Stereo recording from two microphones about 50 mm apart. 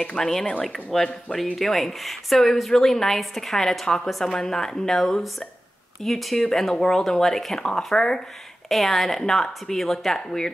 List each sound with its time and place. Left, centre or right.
0.2 s speech: centre